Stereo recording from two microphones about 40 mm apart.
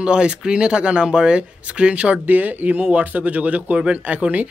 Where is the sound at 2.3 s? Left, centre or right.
Right.